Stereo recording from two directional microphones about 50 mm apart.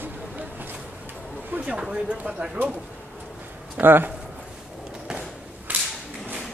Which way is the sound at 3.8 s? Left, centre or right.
Right.